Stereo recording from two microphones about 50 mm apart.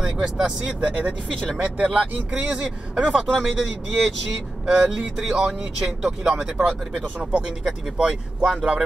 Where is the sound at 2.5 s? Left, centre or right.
Centre.